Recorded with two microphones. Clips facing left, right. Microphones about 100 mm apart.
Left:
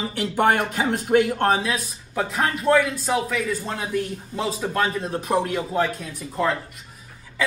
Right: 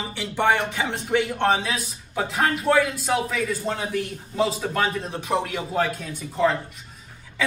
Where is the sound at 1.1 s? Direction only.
30° left (ahead or behind).